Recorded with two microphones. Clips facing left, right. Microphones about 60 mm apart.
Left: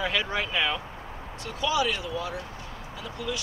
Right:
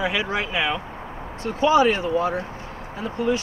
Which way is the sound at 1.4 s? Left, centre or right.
Right.